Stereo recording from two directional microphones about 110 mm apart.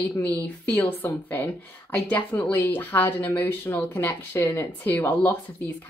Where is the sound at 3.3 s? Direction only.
30° left (ahead or behind).